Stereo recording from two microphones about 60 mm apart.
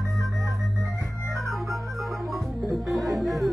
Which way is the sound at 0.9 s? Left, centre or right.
Right.